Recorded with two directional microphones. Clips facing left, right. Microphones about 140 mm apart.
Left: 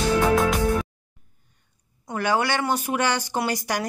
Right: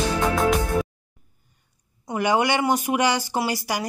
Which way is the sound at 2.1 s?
15° right (ahead or behind).